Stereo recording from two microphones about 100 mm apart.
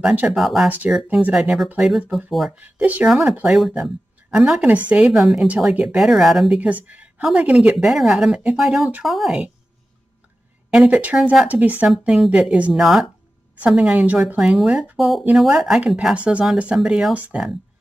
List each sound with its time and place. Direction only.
0.0 s speech: 15° right (ahead or behind)
0.3 s speech: centre (ahead or behind)
0.7 s speech: 15° right (ahead or behind); by 2.5 s centre (ahead or behind)
2.5 s speech: 15° right (ahead or behind)
5.0 s speech: centre (ahead or behind)
6.6 s speech: 15° right (ahead or behind)
7.2 s a woman's voice: centre (ahead or behind)
10.7 s speech: 10° right (ahead or behind)